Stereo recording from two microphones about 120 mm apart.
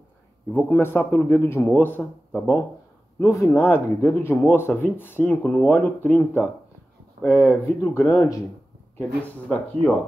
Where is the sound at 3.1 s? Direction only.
25° left (ahead or behind).